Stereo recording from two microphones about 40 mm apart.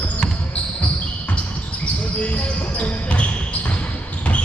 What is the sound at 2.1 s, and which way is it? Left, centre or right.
Basketball bounce, left.